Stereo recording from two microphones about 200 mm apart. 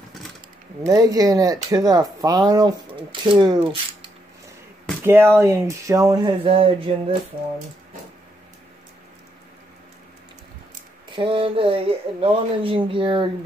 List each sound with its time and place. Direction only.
0.8 s speech: 20° right (ahead or behind)
5.0 s speech: 10° right (ahead or behind); by 6.7 s 30° right (ahead or behind)
11.1 s speech: 25° right (ahead or behind)